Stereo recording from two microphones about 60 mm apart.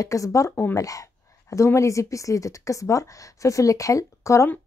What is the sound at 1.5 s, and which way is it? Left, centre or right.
A woman's voice, left.